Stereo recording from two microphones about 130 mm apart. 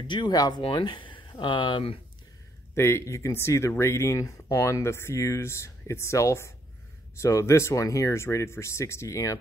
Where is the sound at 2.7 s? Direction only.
20° left (ahead or behind).